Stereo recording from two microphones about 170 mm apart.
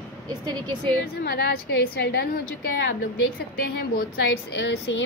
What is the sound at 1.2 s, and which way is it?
A woman's voice, 70° left (ahead or behind).